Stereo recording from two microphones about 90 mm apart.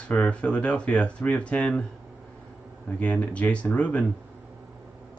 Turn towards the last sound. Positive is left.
turn(degrees=15)  # may be behind; listen again after turning